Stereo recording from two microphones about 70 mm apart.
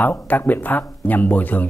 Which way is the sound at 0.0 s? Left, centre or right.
Left.